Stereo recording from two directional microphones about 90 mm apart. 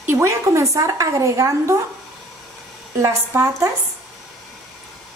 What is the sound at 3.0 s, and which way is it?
Speech, 35° right (ahead or behind).